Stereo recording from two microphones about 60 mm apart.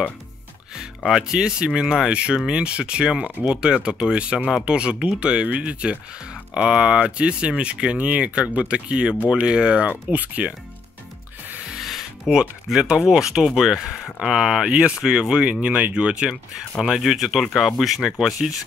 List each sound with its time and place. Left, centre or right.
1.0 s speech: centre; by 10.5 s right
11.7 s music: centre
12.9 s speech: centre
17.0 s speech: centre